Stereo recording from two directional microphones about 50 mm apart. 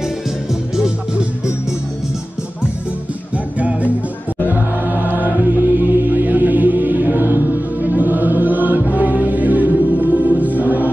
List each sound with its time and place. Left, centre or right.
3.5 s music: right